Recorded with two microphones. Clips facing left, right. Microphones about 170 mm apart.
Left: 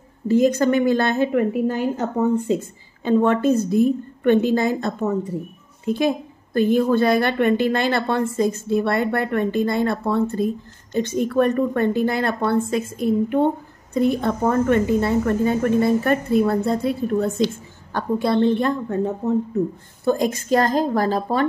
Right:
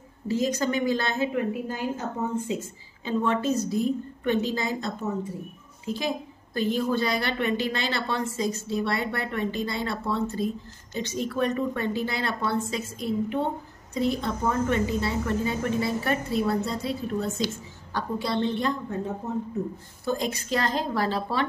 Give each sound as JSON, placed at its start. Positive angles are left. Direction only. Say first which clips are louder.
{"t": 0.3, "sound": "a woman's voice", "louder": "left 9 dB", "side_deg": 55}
{"t": 20.1, "sound": "a woman's voice", "louder": "left 8 dB", "side_deg": 50}